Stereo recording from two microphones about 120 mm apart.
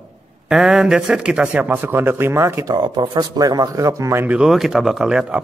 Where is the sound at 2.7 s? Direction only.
40° right (ahead or behind).